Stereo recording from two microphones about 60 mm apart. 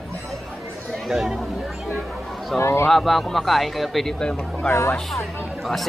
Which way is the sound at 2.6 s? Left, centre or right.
Left.